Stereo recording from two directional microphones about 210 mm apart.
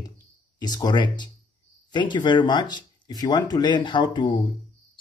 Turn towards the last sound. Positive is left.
turn(degrees=20)  # may be behind; listen again after turning